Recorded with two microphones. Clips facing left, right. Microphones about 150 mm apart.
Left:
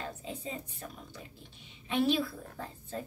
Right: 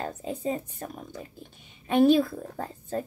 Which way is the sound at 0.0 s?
45° right (ahead or behind).